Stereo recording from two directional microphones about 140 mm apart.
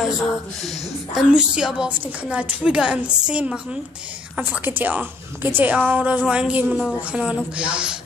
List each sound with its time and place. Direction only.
1.1 s a woman's voice: 5° right (ahead or behind)